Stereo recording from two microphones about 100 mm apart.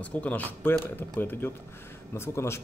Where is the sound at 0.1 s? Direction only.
15° left (ahead or behind).